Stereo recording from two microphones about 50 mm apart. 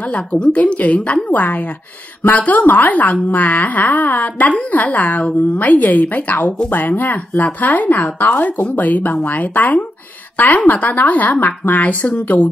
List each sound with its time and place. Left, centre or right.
0.1 s a woman's voice: left